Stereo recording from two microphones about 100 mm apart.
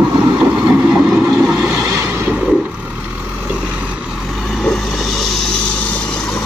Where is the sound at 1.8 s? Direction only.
25° right (ahead or behind).